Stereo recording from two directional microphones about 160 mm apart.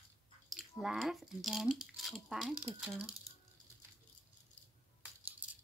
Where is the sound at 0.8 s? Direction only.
Centre (ahead or behind).